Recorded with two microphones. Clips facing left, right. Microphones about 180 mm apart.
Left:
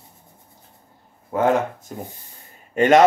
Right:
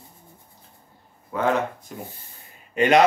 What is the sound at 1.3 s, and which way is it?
Speech, 45° left (ahead or behind).